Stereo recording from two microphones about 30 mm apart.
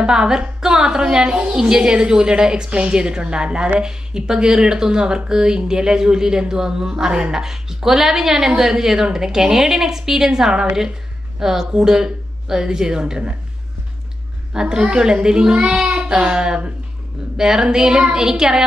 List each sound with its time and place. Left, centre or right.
0.0 s a woman's voice: right
1.6 s a woman's voice: right
7.3 s a woman's voice: centre
14.5 s a woman's voice: right